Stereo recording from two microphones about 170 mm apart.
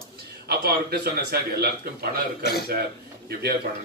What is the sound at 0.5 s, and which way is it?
A man's voice, 65° right (ahead or behind).